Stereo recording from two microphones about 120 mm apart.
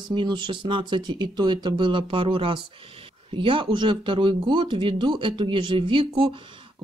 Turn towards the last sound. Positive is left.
turn(degrees=-45)  # may be behind; listen again after turning